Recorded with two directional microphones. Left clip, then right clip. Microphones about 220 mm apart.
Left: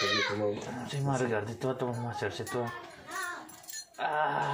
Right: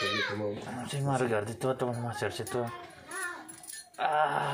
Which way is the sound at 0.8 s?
15° right (ahead or behind).